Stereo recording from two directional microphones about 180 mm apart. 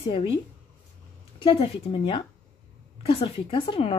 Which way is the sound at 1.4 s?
30° left (ahead or behind).